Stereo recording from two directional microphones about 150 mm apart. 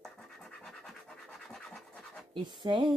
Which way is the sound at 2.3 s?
30° right (ahead or behind).